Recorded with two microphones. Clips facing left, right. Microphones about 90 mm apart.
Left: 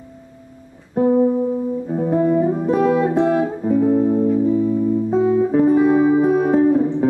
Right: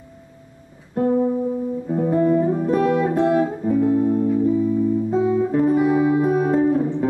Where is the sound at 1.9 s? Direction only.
5° left (ahead or behind).